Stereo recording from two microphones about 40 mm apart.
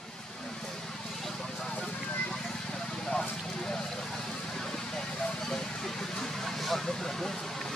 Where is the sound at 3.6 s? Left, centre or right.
Centre.